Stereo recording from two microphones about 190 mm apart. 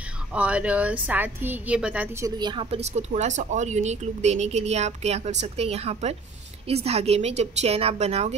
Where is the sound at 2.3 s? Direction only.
20° right (ahead or behind).